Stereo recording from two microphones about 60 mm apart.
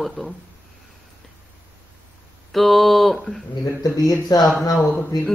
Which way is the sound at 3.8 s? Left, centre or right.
Left.